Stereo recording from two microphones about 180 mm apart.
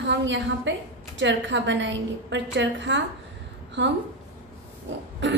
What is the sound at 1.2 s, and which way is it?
A woman's voice, 80° right.